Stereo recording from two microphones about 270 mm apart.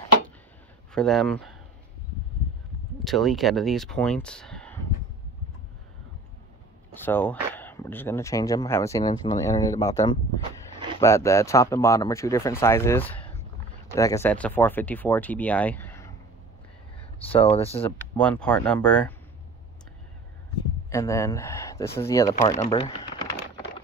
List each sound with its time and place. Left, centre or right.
0.9 s speech: centre
3.0 s speech: centre
6.9 s speech: centre
17.3 s speech: left
17.8 s speech: centre
20.9 s speech: centre